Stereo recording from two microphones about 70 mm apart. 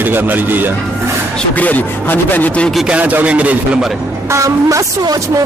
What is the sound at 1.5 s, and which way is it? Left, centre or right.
A man's voice, left.